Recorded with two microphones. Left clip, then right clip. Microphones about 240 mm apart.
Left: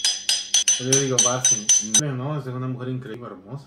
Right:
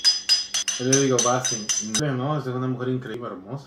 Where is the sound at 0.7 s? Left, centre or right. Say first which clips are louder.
Even; left.